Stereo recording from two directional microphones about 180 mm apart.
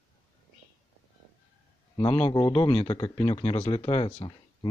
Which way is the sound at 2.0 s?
30° left (ahead or behind).